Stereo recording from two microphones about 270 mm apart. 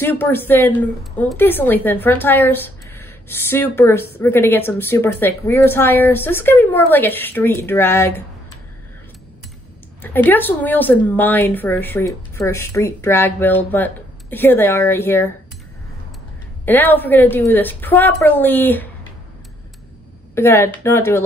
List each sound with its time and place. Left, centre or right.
0.0 s speech: centre
10.0 s speech: centre
16.6 s speech: centre
20.3 s speech: centre